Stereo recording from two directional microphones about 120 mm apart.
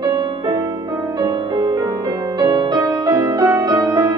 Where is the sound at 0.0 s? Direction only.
35° right (ahead or behind).